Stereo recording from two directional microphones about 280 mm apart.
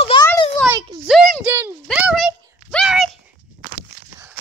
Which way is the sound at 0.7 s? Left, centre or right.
Centre.